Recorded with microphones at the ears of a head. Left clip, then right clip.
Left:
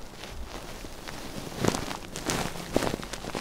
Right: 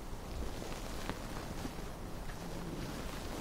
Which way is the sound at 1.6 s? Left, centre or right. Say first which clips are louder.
Left 16 dB; left.